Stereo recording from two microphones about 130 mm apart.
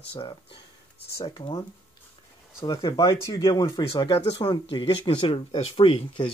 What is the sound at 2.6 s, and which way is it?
Speech, 30° left (ahead or behind).